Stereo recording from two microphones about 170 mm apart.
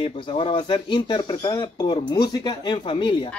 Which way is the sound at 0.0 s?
30° left (ahead or behind).